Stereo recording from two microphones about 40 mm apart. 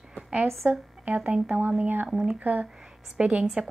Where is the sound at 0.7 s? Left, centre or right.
Right.